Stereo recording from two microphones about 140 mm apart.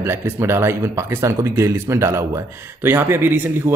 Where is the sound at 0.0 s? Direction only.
15° right (ahead or behind).